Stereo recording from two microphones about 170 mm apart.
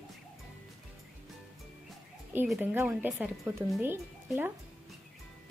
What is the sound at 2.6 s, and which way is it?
Speech, 10° right (ahead or behind).